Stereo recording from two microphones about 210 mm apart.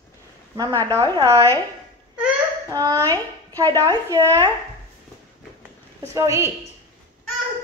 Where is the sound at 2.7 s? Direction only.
15° right (ahead or behind).